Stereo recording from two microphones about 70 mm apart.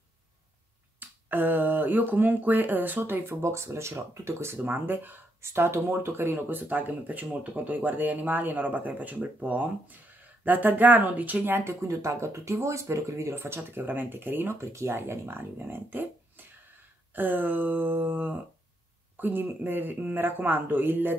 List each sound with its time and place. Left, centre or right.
0.9 s speech: right
5.4 s speech: right
11.9 s speech: right